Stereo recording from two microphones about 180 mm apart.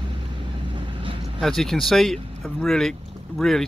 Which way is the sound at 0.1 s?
30° right (ahead or behind).